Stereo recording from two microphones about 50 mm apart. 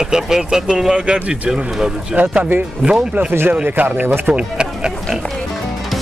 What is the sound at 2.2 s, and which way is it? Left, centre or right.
Speech, right.